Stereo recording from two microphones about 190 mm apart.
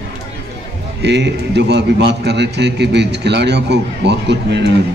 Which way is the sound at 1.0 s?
65° right (ahead or behind).